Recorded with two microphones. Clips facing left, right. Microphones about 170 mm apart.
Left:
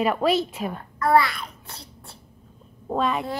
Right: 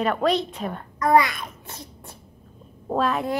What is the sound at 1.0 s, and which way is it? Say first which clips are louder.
Babbling: right 1 dB; 20° right (ahead or behind).